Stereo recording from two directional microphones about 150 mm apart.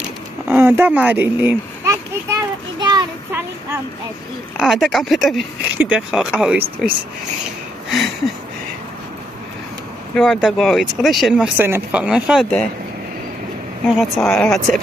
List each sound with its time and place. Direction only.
0.5 s a sound: 10° right (ahead or behind)
3.3 s speech: 15° right (ahead or behind)
4.6 s speech: 5° right (ahead or behind)
10.1 s speech: centre (ahead or behind)
11.5 s speech: 15° right (ahead or behind); by 12.6 s centre (ahead or behind)
13.8 s speech: centre (ahead or behind)